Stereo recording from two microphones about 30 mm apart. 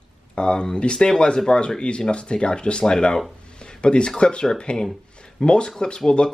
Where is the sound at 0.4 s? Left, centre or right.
Left.